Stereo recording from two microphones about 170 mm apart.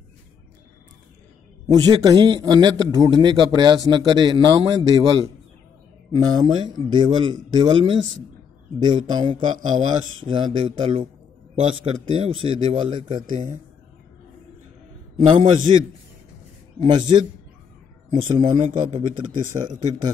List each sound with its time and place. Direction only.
1.7 s a man's voice: 25° right (ahead or behind)
9.6 s a man's voice: 45° right (ahead or behind)
10.2 s a man's voice: 30° right (ahead or behind)
15.1 s a man's voice: 35° right (ahead or behind)
16.8 s a man's voice: 25° right (ahead or behind)
18.6 s a man's voice: 45° right (ahead or behind)
18.9 s a man's voice: 30° right (ahead or behind)
19.3 s a man's voice: 50° right (ahead or behind)
19.8 s a man's voice: 25° right (ahead or behind)